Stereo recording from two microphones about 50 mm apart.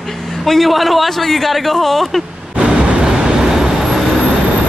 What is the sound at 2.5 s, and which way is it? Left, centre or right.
Vehicle, right.